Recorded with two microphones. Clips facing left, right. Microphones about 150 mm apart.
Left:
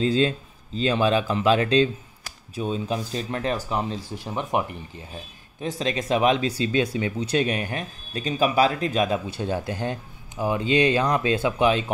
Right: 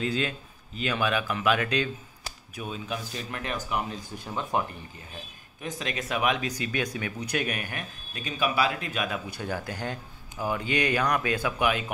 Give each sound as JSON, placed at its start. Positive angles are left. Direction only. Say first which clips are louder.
{"t": 0.0, "sound": "speech", "louder": "left 8 dB", "side_deg": 30}
{"t": 5.6, "sound": "speech", "louder": "left 7 dB", "side_deg": 30}